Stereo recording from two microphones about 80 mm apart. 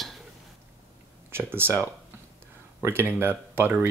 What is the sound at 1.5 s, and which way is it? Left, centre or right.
Speech, right.